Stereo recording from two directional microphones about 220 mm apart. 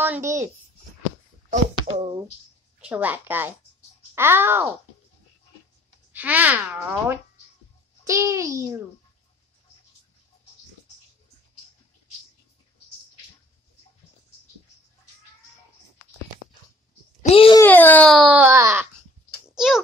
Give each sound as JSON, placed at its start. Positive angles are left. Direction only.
{"t": 0.0, "sound": "a child's voice", "side_deg": -10}
{"t": 1.5, "sound": "a sound", "side_deg": -25}
{"t": 2.8, "sound": "a child's voice", "side_deg": -5}
{"t": 6.1, "sound": "a child's voice", "side_deg": -10}
{"t": 17.2, "sound": "a child's voice", "side_deg": 25}
{"t": 17.6, "sound": "speech", "side_deg": 10}
{"t": 19.5, "sound": "a sound", "side_deg": 0}